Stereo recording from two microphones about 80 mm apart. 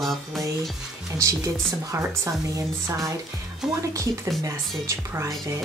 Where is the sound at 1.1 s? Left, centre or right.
Right.